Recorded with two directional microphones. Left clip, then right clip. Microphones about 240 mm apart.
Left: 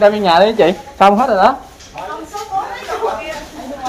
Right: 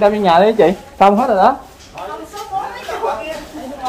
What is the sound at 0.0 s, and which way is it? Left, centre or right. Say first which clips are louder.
Speech: left 1 dB; centre.